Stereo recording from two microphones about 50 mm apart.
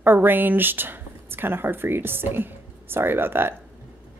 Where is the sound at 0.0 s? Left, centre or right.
Right.